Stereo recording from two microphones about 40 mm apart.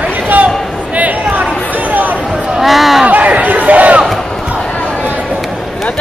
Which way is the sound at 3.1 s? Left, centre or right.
Right.